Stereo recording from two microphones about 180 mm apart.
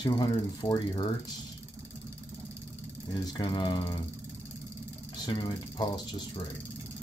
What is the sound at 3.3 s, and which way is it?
Speech, 25° left (ahead or behind).